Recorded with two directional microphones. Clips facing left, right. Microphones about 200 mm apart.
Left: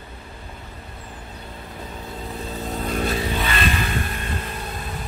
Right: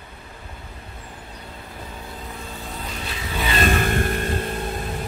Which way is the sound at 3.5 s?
50° right (ahead or behind).